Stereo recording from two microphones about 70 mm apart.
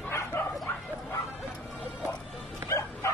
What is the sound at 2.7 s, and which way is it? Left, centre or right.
Bow-wow, left.